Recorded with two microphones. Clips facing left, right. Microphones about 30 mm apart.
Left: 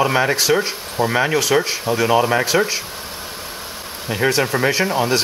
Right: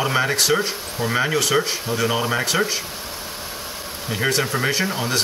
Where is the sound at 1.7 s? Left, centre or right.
Left.